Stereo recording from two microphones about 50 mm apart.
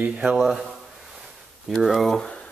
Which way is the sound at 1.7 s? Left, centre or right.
Centre.